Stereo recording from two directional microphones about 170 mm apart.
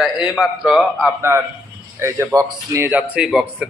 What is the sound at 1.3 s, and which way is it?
Speech, 15° right (ahead or behind).